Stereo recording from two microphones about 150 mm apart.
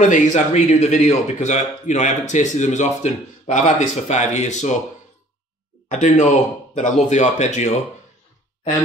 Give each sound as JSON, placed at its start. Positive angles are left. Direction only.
{"t": 0.1, "sound": "speech", "side_deg": 50}
{"t": 5.9, "sound": "speech", "side_deg": 55}